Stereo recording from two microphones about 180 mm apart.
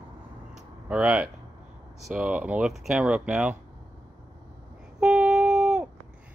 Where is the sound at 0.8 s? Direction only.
5° right (ahead or behind).